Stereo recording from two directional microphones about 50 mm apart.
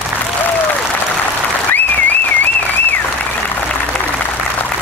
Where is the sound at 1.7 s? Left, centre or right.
Left.